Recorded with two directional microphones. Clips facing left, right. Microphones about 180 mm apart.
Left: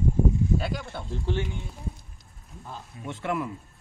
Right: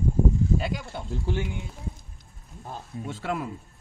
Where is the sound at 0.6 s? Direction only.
15° right (ahead or behind).